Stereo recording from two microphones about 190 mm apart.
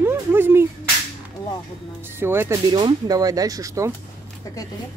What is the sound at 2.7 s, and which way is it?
Speech, 25° right (ahead or behind).